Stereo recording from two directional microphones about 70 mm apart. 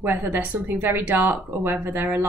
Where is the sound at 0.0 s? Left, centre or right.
Right.